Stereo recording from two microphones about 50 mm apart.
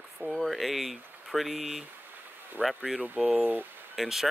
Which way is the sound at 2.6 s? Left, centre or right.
Right.